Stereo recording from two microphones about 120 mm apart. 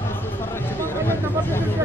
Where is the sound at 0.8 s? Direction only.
20° left (ahead or behind).